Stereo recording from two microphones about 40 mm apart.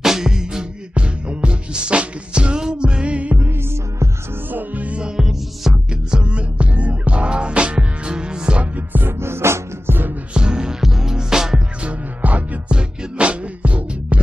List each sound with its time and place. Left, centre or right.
0.0 s music: centre
0.9 s music: right
3.3 s music: right
4.5 s music: right
5.0 s music: centre
9.0 s music: right
10.3 s music: right
11.8 s music: right